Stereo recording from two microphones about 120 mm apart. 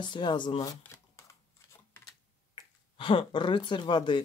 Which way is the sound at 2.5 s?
45° left (ahead or behind).